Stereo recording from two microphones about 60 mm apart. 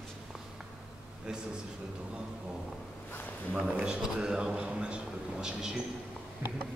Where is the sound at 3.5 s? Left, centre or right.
Right.